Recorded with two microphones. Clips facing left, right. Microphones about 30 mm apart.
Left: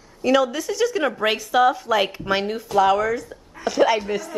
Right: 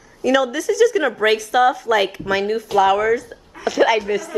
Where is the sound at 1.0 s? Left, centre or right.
Centre.